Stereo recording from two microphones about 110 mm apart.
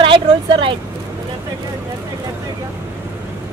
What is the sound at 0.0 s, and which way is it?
Vehicle, 50° right (ahead or behind).